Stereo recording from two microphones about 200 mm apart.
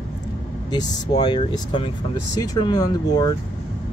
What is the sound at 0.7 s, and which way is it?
Speech, 20° left (ahead or behind).